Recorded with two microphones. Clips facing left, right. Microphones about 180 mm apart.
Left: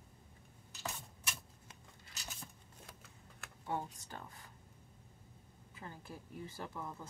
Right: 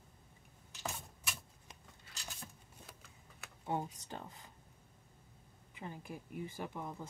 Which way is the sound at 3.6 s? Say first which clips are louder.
Right 2 dB; 15° right (ahead or behind).